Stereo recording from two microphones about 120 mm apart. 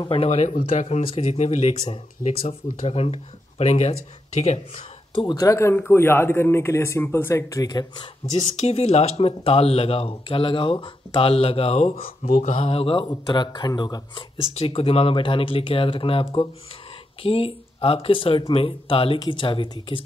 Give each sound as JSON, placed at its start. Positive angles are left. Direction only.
{"t": 0.1, "sound": "speech", "side_deg": 55}
{"t": 0.7, "sound": "speech", "side_deg": 65}
{"t": 2.4, "sound": "speech", "side_deg": 55}
{"t": 4.7, "sound": "speech", "side_deg": 35}
{"t": 8.6, "sound": "speech", "side_deg": 60}
{"t": 13.1, "sound": "speech", "side_deg": 35}